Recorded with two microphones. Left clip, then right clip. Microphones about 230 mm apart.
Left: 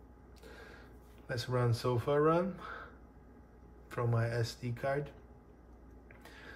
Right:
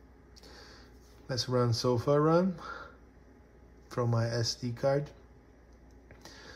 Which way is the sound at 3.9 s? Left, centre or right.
Centre.